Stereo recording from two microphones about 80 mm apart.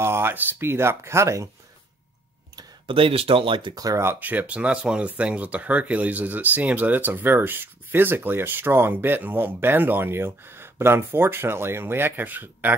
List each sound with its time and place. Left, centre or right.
0.0 s speech: right
2.9 s speech: right
3.7 s speech: right
4.0 s speech: right